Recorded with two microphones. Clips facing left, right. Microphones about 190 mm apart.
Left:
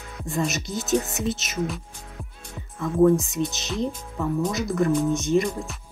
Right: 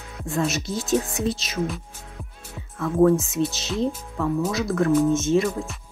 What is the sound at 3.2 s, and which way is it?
Speech, centre (ahead or behind).